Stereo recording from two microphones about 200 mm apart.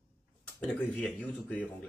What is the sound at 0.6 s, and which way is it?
Speech, centre (ahead or behind).